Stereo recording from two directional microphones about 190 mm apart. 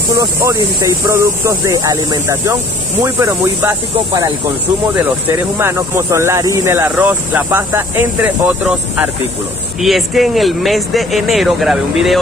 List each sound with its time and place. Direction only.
0.2 s speech: 15° right (ahead or behind)
5.6 s speech: 15° right (ahead or behind)